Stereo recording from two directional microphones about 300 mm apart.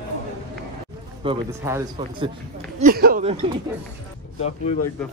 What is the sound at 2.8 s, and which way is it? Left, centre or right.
Speech, right.